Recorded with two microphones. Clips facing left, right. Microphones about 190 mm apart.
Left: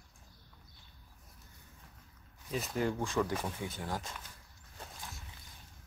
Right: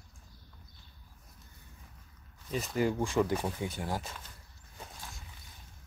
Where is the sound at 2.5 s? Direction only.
Centre (ahead or behind).